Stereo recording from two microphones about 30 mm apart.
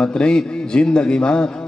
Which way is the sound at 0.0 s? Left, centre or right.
Left.